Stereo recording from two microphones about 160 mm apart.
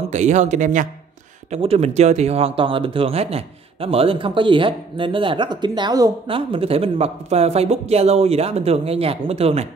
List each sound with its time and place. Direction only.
0.1 s speech: 45° right (ahead or behind)
1.5 s speech: 40° right (ahead or behind); by 6.1 s 25° right (ahead or behind)
6.2 s speech: 35° right (ahead or behind)